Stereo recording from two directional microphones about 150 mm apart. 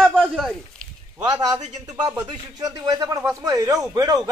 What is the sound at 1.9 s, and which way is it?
A man's voice, 25° right (ahead or behind).